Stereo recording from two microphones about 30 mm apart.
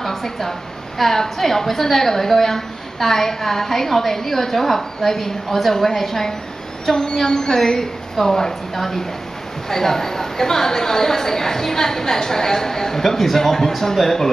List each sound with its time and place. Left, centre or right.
0.0 s a woman's voice: centre